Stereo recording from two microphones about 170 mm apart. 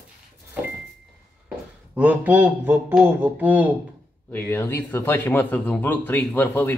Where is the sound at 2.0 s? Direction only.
10° right (ahead or behind).